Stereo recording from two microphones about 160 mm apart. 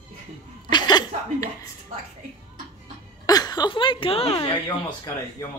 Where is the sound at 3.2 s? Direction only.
25° left (ahead or behind).